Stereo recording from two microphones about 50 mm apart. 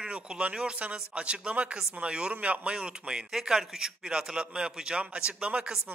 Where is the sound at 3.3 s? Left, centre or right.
Centre; by 5.7 s right.